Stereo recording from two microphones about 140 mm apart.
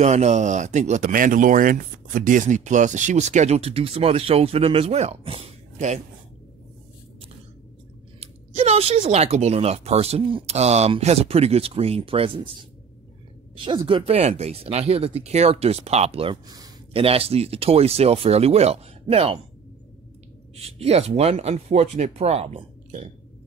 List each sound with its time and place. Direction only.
0.0 s speech: 50° right (ahead or behind)
8.2 s speech: 45° right (ahead or behind)
13.8 s speech: 40° right (ahead or behind)
16.4 s speech: 25° right (ahead or behind)
16.9 s speech: 45° right (ahead or behind)
20.6 s speech: 50° right (ahead or behind)